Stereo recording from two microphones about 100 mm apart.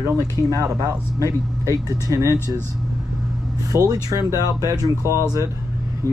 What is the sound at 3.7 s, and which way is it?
Speech, 35° right (ahead or behind).